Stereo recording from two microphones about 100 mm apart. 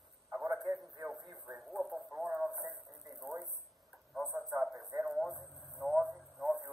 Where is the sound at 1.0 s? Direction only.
5° right (ahead or behind).